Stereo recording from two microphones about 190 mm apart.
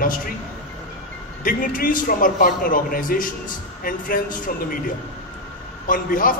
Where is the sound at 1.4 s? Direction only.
45° left (ahead or behind).